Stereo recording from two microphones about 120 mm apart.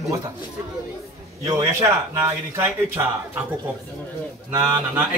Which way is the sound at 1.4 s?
25° right (ahead or behind).